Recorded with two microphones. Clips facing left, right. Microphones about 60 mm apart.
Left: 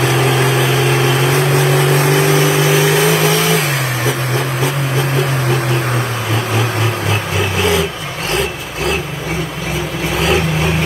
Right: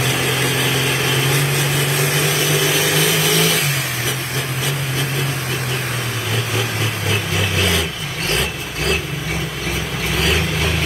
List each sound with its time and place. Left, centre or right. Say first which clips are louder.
0.0 s vehicle: left 6 dB; left
1.5 s vehicle: left 7 dB; left
1.9 s vehicle: left 7 dB; left
7.1 s vehicle: left 3 dB; left
10.1 s vehicle: left 5 dB; left